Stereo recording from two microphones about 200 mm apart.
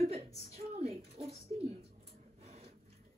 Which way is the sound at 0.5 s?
30° right (ahead or behind).